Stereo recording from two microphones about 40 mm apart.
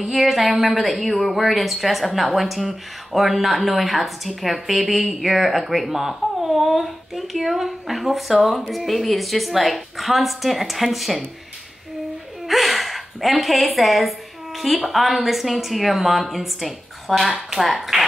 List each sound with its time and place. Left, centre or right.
0.0 s a woman's voice: centre
12.4 s a woman's voice: centre